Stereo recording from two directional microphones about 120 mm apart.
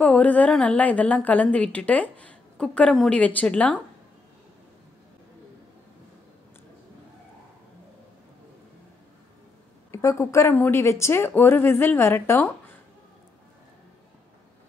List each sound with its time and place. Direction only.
0.0 s a woman's voice: 10° left (ahead or behind)
9.8 s speech: 25° left (ahead or behind)